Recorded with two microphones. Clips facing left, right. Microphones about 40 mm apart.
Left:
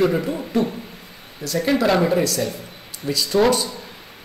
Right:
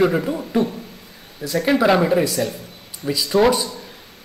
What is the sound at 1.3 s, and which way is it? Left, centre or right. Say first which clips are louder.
Speech: right 2 dB; centre.